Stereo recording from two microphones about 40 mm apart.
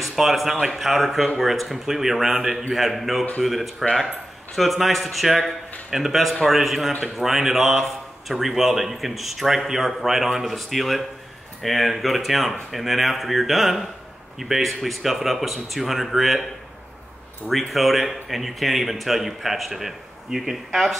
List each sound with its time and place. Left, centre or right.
0.0 s a man's voice: centre
17.5 s a man's voice: centre